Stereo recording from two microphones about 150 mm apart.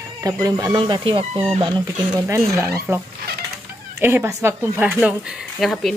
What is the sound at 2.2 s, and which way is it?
Speech, 20° right (ahead or behind).